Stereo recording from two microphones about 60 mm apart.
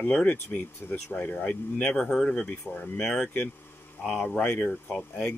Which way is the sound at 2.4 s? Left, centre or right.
Left.